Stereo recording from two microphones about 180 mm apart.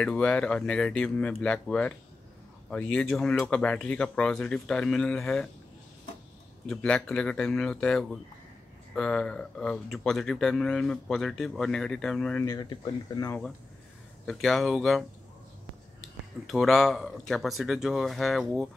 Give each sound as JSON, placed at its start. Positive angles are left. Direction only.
{"t": 0.0, "sound": "speech", "side_deg": 5}
{"t": 6.7, "sound": "speech", "side_deg": 5}
{"t": 12.4, "sound": "speech", "side_deg": 20}
{"t": 14.2, "sound": "speech", "side_deg": 0}
{"t": 16.4, "sound": "speech", "side_deg": 0}